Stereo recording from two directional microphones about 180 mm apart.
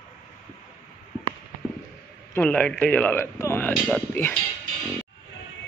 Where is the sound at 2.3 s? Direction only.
10° left (ahead or behind).